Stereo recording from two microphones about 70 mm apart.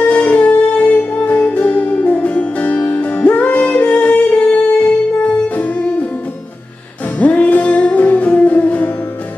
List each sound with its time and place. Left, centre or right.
0.0 s music: centre
7.2 s music: centre